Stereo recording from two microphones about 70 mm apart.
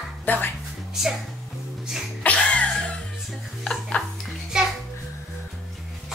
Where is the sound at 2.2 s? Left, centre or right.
Centre.